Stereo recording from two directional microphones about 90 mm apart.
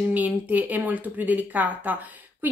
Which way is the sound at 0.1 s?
20° right (ahead or behind).